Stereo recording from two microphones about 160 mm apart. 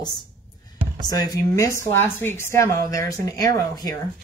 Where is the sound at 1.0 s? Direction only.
25° left (ahead or behind).